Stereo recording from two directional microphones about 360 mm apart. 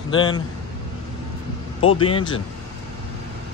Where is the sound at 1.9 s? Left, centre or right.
Centre.